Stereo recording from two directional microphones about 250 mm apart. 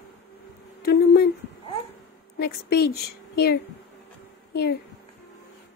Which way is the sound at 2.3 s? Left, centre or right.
Left.